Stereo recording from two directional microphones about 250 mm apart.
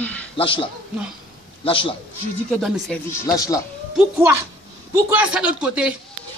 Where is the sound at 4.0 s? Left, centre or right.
Centre.